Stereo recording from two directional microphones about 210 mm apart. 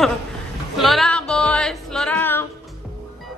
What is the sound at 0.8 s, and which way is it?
Music, centre (ahead or behind).